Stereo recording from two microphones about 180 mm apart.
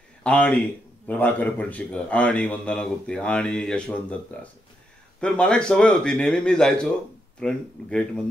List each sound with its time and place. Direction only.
0.2 s a man's voice: 5° left (ahead or behind)